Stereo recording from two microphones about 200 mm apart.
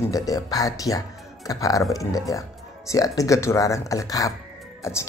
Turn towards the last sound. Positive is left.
turn(degrees=15)  # may be behind; listen again after turning